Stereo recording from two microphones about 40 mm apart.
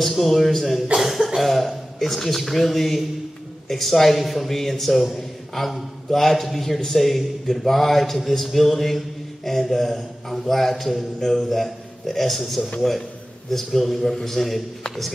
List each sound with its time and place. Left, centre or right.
0.0 s a man's voice: centre
0.9 s a man's voice: centre